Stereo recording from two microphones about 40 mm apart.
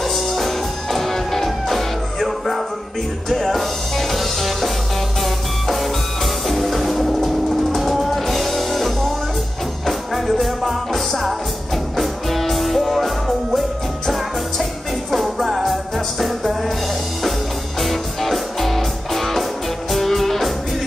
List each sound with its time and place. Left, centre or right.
0.0 s music: centre
17.7 s music: centre